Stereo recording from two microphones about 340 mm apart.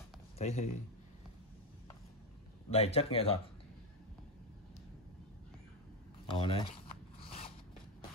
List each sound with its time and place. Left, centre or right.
0.4 s a man's voice: centre
2.7 s speech: centre
6.2 s speech: centre
7.2 s scissors: centre